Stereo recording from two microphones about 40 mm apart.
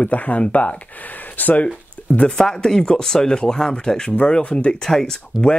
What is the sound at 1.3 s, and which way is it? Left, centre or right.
Speech, left.